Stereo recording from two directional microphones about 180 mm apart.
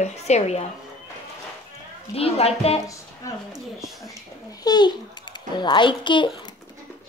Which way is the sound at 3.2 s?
15° left (ahead or behind).